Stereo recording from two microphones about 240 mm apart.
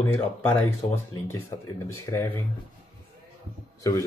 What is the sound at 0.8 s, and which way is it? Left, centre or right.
Speech, left.